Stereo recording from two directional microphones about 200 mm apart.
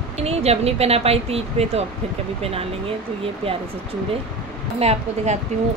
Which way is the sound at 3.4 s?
30° right (ahead or behind).